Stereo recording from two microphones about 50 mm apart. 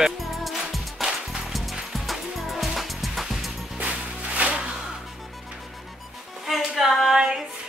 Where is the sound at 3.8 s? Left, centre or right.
Right.